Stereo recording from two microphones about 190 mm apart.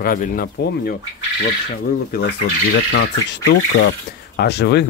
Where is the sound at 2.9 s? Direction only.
75° left (ahead or behind).